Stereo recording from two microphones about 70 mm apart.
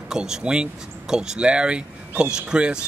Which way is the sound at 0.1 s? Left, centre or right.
Centre.